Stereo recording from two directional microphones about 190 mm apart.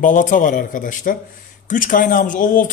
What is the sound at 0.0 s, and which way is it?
Speech, 45° left (ahead or behind).